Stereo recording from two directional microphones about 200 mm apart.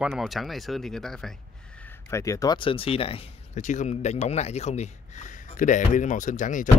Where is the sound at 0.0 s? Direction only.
Centre (ahead or behind).